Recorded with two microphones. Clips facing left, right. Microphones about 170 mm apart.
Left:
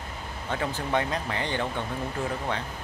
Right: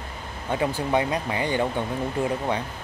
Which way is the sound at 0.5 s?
15° right (ahead or behind).